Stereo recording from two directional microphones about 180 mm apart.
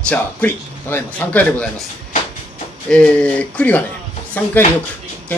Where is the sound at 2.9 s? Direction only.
5° left (ahead or behind).